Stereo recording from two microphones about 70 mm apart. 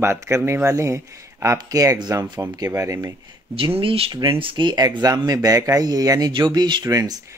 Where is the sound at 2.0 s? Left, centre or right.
Right.